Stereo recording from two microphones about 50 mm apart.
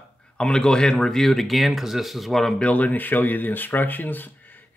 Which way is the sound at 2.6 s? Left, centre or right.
Left.